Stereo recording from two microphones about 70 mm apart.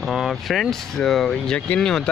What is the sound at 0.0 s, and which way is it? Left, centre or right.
Speech, centre.